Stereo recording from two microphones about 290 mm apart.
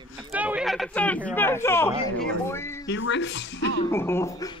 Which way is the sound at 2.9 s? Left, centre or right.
Left.